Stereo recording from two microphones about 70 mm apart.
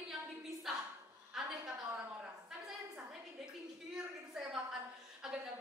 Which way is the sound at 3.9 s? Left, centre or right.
Centre.